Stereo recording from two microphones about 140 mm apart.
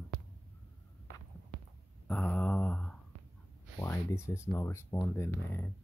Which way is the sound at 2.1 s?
10° left (ahead or behind).